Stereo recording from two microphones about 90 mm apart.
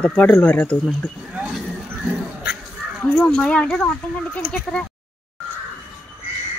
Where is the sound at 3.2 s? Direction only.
10° left (ahead or behind).